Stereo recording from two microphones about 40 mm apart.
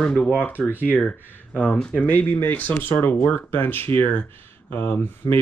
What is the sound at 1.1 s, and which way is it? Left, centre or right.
Speech, left.